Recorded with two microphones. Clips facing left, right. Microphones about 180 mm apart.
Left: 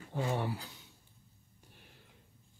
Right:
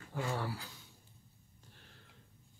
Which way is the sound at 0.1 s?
20° left (ahead or behind).